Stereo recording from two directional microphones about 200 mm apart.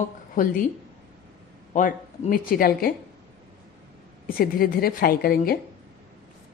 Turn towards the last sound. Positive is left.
turn(degrees=50)  # may be behind; listen again after turning